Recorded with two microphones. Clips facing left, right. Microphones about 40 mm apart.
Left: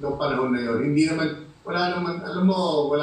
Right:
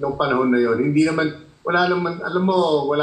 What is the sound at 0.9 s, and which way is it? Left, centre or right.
Speech, right.